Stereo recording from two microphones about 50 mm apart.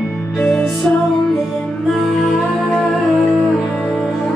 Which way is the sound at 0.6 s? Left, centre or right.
Centre.